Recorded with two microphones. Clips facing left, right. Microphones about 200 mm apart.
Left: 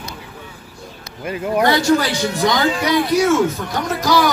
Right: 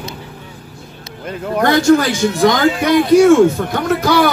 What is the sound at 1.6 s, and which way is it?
Speech, 50° right (ahead or behind).